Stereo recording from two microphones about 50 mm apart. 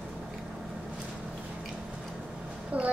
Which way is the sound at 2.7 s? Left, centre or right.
Right.